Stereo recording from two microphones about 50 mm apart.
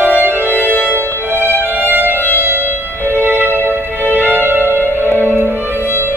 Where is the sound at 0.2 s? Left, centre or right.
Right.